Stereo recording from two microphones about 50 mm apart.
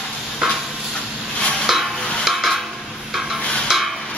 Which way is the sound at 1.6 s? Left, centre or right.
Centre.